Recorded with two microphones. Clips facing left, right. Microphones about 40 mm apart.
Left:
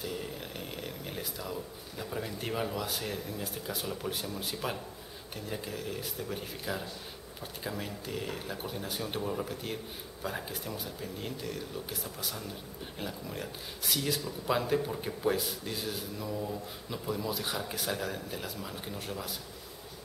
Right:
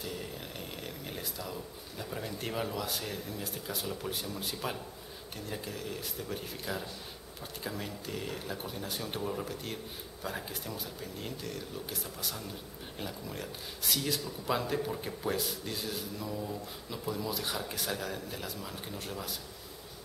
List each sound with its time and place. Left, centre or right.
0.0 s speech: centre